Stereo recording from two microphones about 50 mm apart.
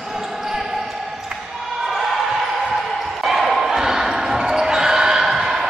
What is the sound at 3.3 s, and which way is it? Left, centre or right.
Basketball bounce, centre.